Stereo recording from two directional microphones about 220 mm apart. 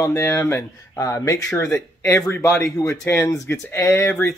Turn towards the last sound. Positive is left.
turn(degrees=10)  # may be behind; listen again after turning